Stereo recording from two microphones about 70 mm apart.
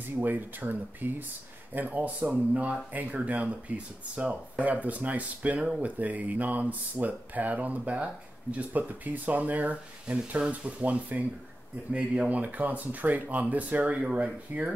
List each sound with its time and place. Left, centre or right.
0.2 s speech: right